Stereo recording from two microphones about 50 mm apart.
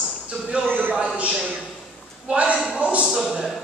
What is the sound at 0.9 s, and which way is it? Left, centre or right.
Speech, right.